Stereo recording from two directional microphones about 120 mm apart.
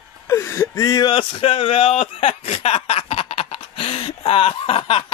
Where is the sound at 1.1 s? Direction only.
45° left (ahead or behind).